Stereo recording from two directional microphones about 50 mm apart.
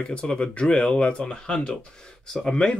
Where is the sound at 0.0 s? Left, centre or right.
Centre.